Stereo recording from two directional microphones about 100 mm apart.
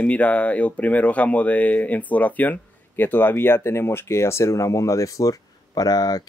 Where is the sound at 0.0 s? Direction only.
15° left (ahead or behind).